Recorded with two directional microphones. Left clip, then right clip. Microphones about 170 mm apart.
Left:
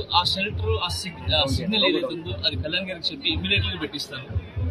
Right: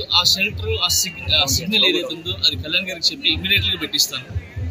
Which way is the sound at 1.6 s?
Centre (ahead or behind).